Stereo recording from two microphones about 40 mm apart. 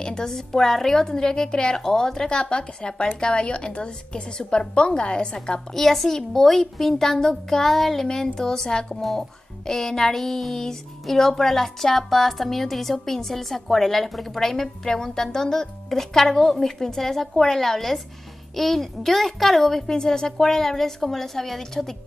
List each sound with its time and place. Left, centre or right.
0.0 s a child's voice: centre
5.8 s a child's voice: centre